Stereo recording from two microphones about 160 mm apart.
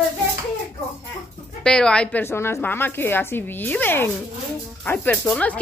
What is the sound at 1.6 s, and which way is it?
A woman's voice, 5° left (ahead or behind).